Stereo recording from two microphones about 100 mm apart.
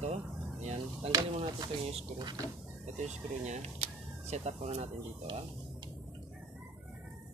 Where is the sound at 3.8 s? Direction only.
90° right.